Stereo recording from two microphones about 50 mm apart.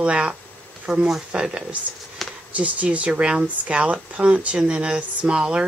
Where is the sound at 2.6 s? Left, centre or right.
Right.